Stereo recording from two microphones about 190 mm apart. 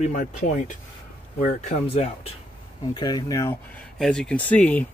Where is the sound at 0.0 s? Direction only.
40° left (ahead or behind).